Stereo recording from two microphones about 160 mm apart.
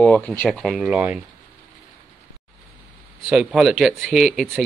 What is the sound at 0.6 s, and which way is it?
Speech, centre (ahead or behind).